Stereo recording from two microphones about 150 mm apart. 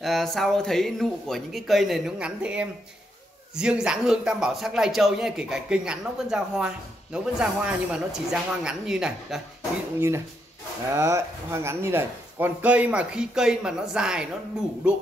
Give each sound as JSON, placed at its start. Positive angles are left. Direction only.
{"t": 0.0, "sound": "speech", "side_deg": 0}
{"t": 9.9, "sound": "speech", "side_deg": -15}